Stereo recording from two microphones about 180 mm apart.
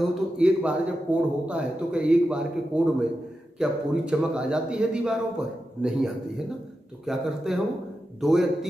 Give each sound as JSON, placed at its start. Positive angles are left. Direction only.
{"t": 0.4, "sound": "a man's voice", "side_deg": -5}